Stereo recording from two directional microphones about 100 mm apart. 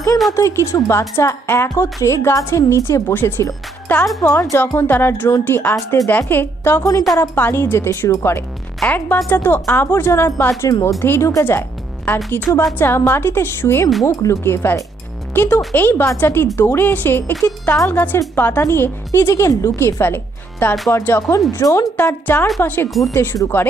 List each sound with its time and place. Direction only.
0.3 s a woman's voice: 30° left (ahead or behind)
3.1 s a woman's voice: 20° left (ahead or behind)
6.8 s speech: 35° left (ahead or behind)
7.2 s a woman's voice: 20° left (ahead or behind)
12.1 s a woman's voice: 15° left (ahead or behind)
14.0 s a woman's voice: 35° left (ahead or behind)
21.9 s a woman's voice: 20° left (ahead or behind)